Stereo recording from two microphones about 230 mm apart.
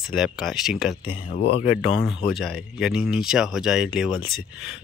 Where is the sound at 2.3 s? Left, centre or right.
Centre.